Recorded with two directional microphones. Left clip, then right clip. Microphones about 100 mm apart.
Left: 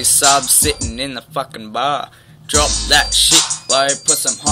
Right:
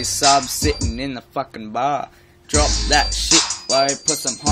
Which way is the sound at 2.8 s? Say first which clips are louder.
Left 5 dB; 35° right (ahead or behind).